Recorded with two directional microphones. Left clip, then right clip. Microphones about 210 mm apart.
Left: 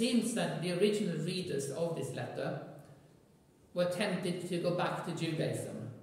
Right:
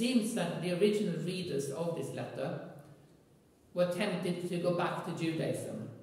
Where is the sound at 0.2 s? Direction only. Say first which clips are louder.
Even; 15° left (ahead or behind).